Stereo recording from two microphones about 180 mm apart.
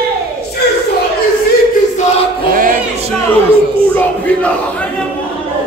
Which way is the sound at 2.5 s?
50° right (ahead or behind).